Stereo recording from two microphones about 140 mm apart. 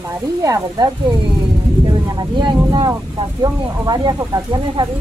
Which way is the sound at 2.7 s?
30° right (ahead or behind).